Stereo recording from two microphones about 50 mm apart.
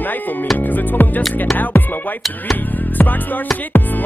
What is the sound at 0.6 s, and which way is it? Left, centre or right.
Music, left.